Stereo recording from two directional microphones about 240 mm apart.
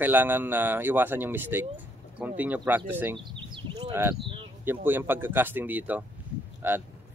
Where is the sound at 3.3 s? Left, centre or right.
Right.